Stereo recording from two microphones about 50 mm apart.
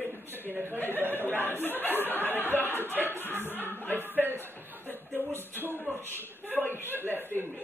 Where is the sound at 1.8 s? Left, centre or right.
Left.